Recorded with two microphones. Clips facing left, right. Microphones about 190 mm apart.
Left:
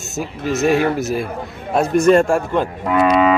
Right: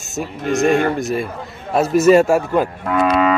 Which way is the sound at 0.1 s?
Centre (ahead or behind).